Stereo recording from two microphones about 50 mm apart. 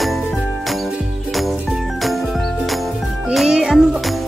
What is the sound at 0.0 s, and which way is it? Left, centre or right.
Jingle, centre.